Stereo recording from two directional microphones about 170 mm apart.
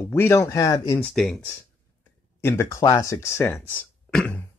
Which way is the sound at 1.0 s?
5° left (ahead or behind).